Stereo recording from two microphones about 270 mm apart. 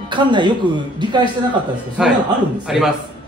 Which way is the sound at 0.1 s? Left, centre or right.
Centre.